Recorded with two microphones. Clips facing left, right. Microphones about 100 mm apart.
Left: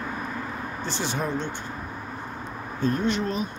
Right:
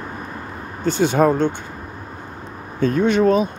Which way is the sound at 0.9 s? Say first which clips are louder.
Right 14 dB; 50° right (ahead or behind).